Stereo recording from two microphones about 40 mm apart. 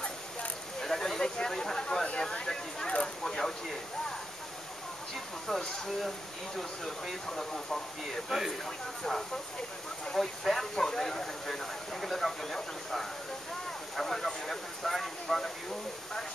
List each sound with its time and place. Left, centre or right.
0.7 s a sound: centre
5.5 s speech: centre
8.3 s speech: centre
8.6 s speech: centre